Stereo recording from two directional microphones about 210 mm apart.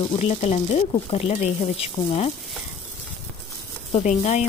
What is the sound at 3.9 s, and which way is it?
Speech, 30° left (ahead or behind).